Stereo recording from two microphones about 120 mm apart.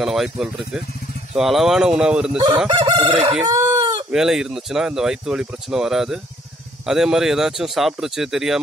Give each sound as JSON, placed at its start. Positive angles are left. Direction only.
{"t": 0.0, "sound": "speech", "side_deg": -5}
{"t": 2.7, "sound": "crowing", "side_deg": -45}
{"t": 3.4, "sound": "chicken", "side_deg": -30}
{"t": 4.1, "sound": "speech", "side_deg": -5}